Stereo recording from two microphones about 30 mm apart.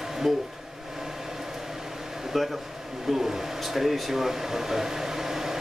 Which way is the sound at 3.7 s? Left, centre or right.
Centre.